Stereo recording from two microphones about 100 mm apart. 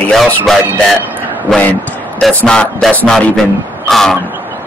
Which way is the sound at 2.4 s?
10° left (ahead or behind).